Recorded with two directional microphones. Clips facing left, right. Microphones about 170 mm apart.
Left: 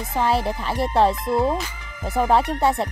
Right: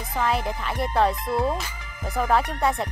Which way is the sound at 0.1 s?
30° left (ahead or behind).